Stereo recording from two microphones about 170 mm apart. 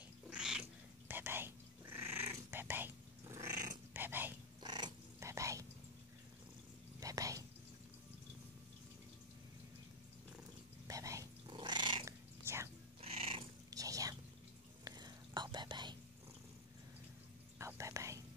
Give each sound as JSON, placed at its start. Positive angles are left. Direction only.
{"t": 0.3, "sound": "cat", "side_deg": -5}
{"t": 4.6, "sound": "purr", "side_deg": -25}
{"t": 7.0, "sound": "whispering", "side_deg": -20}
{"t": 10.9, "sound": "cat", "side_deg": -20}
{"t": 12.4, "sound": "whispering", "side_deg": -15}
{"t": 13.0, "sound": "cat", "side_deg": -35}
{"t": 13.7, "sound": "whispering", "side_deg": -20}
{"t": 17.6, "sound": "whispering", "side_deg": -15}